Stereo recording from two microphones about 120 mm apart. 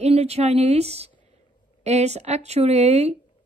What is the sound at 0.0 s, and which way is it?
A woman's voice, 60° right (ahead or behind).